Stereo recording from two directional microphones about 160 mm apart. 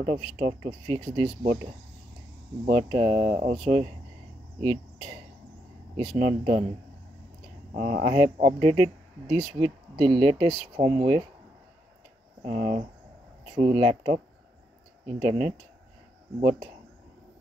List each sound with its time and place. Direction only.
0.0 s speech: 45° right (ahead or behind)
4.6 s speech: 30° right (ahead or behind)
6.1 s speech: 50° right (ahead or behind)
7.7 s speech: 65° right (ahead or behind)
8.0 s speech: 35° right (ahead or behind)
12.4 s speech: 45° right (ahead or behind)